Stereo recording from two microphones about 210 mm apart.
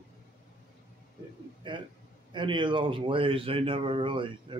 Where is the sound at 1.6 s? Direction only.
25° right (ahead or behind).